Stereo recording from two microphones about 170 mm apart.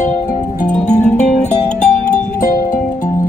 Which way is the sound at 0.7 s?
45° left (ahead or behind).